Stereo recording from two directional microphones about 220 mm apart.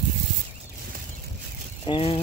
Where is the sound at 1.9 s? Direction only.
25° left (ahead or behind).